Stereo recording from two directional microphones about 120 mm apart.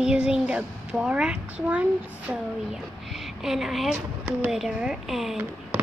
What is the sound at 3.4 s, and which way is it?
Speech, centre (ahead or behind).